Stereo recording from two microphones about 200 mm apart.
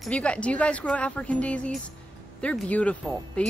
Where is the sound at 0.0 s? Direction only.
5° left (ahead or behind).